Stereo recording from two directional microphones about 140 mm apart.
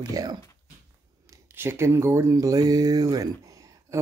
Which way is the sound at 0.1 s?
25° right (ahead or behind).